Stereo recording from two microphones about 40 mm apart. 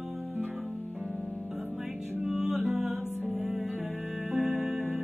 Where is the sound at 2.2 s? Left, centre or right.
Centre.